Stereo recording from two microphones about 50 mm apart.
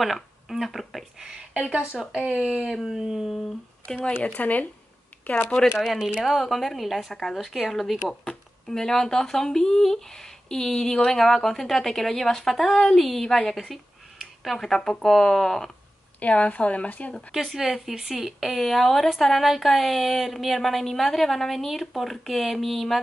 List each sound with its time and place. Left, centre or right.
0.0 s speech: centre
1.5 s speech: centre
2.7 s speech: centre
3.8 s speech: centre
4.4 s speech: left
5.1 s a sound: left
5.8 s speech: centre
8.1 s speech: centre
16.2 s speech: left
17.3 s speech: centre